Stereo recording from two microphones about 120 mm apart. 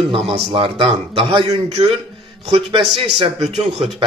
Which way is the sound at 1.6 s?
60° right (ahead or behind).